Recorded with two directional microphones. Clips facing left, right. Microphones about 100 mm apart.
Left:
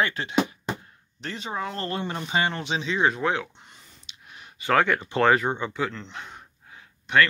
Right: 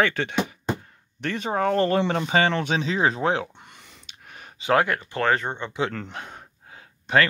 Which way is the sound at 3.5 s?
60° right (ahead or behind).